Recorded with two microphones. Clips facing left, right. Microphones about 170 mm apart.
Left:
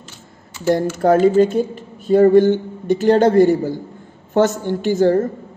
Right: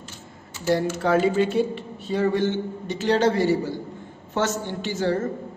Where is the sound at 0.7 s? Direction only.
50° left (ahead or behind).